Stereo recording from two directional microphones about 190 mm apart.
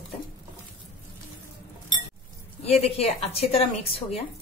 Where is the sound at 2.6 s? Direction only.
30° left (ahead or behind).